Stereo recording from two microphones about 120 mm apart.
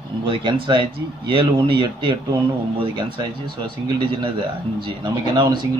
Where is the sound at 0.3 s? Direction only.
40° right (ahead or behind).